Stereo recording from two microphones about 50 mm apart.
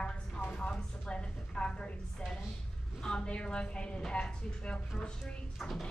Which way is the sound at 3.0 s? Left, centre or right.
Centre.